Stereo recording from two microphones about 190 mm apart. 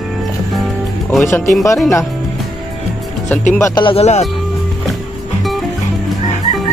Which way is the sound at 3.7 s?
25° left (ahead or behind).